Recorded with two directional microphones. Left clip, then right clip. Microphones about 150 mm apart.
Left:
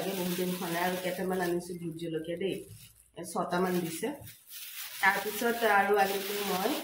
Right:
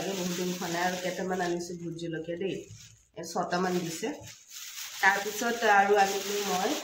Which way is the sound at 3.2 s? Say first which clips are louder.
Right 1 dB; 15° right (ahead or behind).